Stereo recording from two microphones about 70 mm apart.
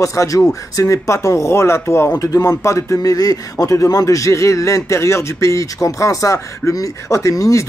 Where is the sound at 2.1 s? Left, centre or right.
Left.